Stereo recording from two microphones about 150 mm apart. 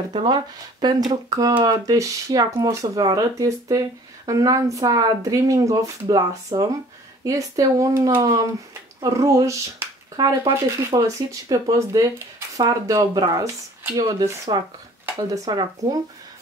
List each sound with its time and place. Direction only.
0.1 s speech: 30° right (ahead or behind)